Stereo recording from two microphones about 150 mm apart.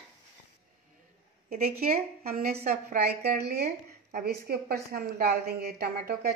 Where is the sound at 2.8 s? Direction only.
90° right.